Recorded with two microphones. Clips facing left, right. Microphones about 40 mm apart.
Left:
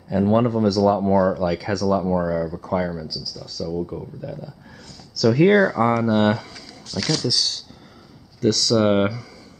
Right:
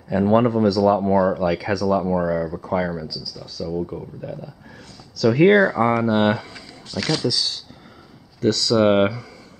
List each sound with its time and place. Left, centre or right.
0.1 s speech: centre
5.1 s speech: centre